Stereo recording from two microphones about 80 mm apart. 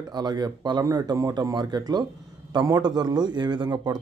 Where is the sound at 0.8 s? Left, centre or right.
Right.